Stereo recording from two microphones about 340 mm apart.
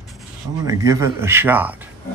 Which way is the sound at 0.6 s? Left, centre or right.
Centre.